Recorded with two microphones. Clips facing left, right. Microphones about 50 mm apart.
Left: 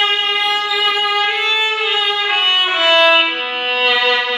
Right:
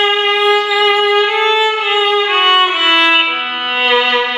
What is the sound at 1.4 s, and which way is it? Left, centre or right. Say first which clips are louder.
Violin: right 4 dB; right.